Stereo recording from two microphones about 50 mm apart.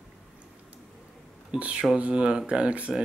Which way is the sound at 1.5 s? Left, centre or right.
Right.